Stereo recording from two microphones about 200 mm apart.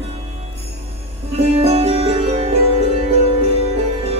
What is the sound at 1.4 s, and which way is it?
Music, 30° right (ahead or behind).